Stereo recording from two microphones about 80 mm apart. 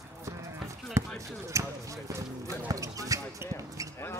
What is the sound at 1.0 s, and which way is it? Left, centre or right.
Speech, right.